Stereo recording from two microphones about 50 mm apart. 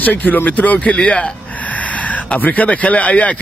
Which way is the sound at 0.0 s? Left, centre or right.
Left.